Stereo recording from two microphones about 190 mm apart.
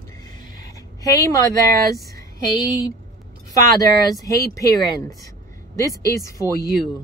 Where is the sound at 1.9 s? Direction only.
55° right (ahead or behind).